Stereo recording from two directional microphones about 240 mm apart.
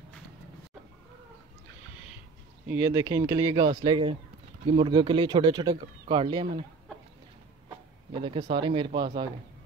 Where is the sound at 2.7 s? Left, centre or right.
Centre.